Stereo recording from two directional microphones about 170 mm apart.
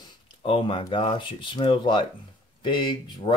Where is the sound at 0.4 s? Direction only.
30° left (ahead or behind).